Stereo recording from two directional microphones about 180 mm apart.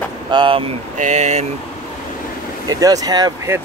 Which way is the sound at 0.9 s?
40° right (ahead or behind).